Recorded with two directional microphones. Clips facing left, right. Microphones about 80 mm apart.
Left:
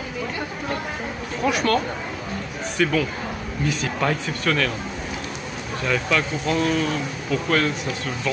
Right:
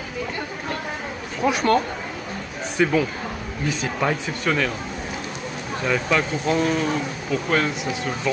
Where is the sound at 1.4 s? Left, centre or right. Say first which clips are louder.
Right 2 dB; right.